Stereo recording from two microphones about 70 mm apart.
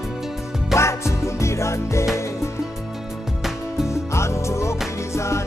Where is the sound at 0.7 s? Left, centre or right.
Left.